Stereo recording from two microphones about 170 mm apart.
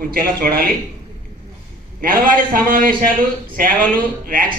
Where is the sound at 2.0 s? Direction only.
55° right (ahead or behind).